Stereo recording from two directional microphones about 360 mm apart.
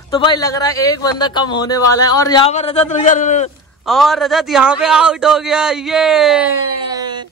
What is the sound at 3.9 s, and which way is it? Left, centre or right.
Speech, centre.